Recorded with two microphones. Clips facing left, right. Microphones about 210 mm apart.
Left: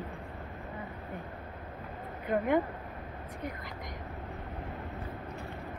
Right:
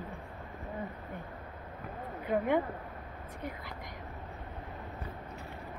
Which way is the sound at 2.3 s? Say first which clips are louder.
Left 1 dB; centre (ahead or behind).